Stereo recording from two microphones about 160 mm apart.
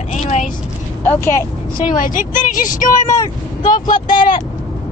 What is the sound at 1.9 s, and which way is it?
Speech, 55° left (ahead or behind).